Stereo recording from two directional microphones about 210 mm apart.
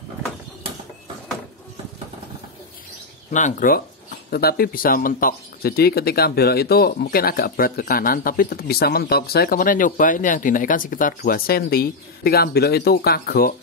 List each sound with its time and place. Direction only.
3.3 s speech: 35° left (ahead or behind)